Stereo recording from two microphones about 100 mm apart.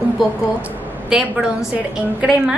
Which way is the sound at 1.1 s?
5° right (ahead or behind).